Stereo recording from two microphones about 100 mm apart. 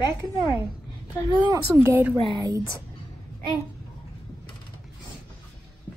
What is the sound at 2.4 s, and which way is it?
Speech, 35° right (ahead or behind).